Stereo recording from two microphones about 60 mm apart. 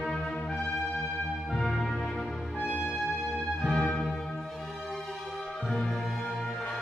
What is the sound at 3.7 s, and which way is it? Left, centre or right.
Music, centre.